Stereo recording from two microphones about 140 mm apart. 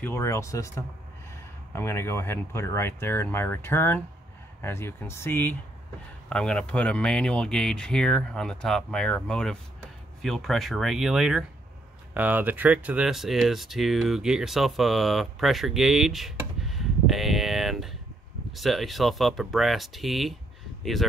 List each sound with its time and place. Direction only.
0.0 s speech: 20° left (ahead or behind); by 16.3 s centre (ahead or behind)
16.6 s a sound: centre (ahead or behind)
18.6 s speech: centre (ahead or behind)